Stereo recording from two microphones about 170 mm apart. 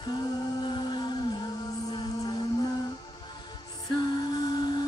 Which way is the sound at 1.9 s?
25° left (ahead or behind).